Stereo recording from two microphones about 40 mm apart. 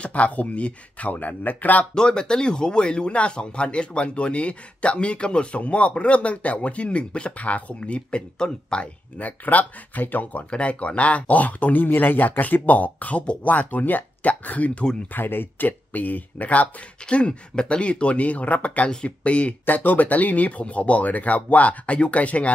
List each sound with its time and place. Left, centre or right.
0.0 s speech: left
2.0 s speech: centre
9.2 s speech: left
10.5 s speech: left
15.1 s speech: left
15.9 s speech: left
17.0 s speech: left
19.6 s speech: left